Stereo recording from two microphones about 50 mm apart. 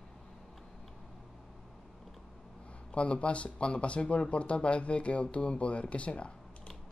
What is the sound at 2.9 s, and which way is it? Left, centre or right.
Speech, left.